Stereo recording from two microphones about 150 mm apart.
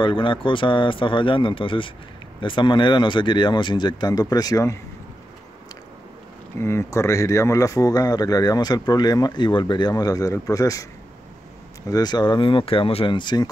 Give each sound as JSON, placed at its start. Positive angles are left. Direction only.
{"t": 0.0, "sound": "speech", "side_deg": 35}
{"t": 6.6, "sound": "speech", "side_deg": 20}
{"t": 11.9, "sound": "speech", "side_deg": 25}